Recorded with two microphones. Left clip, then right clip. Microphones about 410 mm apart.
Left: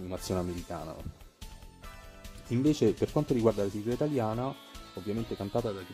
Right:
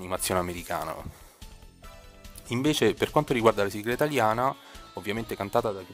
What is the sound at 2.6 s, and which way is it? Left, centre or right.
Speech, centre.